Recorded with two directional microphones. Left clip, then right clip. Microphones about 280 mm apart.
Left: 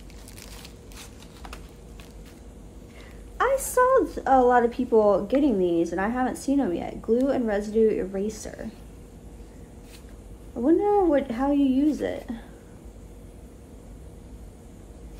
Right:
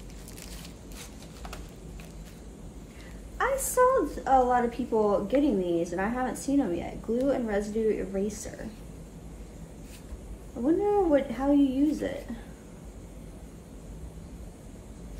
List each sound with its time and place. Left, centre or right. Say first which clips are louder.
3.3 s a woman's voice: left 3 dB; left
10.6 s speech: left 4 dB; left